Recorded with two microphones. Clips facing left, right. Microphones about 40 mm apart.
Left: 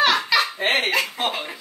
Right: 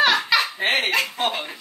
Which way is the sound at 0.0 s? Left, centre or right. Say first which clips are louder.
Even; centre.